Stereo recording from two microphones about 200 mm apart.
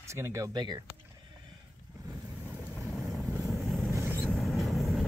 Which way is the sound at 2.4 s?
5° right (ahead or behind).